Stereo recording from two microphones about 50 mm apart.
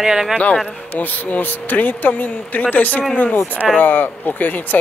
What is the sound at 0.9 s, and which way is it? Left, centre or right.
Speech, left.